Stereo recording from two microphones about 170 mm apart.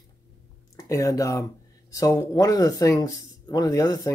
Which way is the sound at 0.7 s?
20° left (ahead or behind).